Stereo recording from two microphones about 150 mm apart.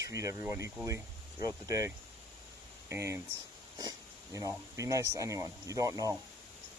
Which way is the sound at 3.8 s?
25° right (ahead or behind).